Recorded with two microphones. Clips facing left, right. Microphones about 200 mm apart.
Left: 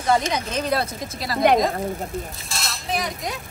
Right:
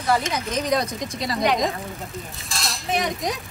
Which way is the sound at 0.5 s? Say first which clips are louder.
Right 3 dB; 15° right (ahead or behind).